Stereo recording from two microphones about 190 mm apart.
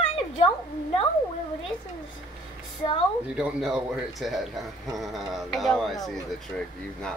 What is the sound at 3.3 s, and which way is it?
A child's voice, 5° right (ahead or behind).